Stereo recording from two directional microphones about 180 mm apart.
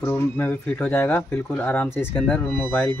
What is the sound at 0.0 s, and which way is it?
Speech, 10° left (ahead or behind).